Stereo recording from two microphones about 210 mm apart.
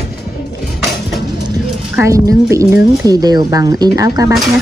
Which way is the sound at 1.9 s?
15° right (ahead or behind).